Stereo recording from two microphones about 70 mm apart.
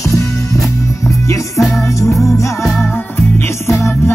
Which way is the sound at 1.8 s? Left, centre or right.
Left.